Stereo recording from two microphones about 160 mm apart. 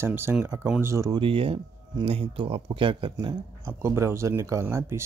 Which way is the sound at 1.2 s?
35° right (ahead or behind).